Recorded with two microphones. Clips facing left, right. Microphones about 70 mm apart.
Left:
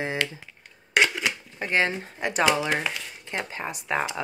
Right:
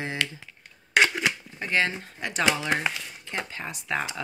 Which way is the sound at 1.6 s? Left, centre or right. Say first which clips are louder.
Left 2 dB; left.